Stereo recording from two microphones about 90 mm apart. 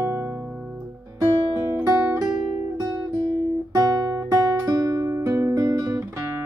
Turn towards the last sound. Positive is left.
turn(degrees=-40)  # may be behind; listen again after turning